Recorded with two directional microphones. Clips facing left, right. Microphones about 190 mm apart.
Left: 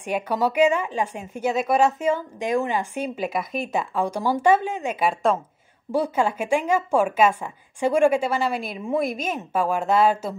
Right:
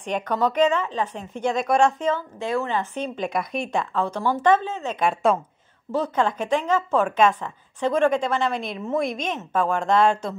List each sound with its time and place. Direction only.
0.0 s a woman's voice: 10° left (ahead or behind)